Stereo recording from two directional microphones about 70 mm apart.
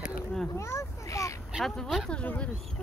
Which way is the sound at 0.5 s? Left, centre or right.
Left.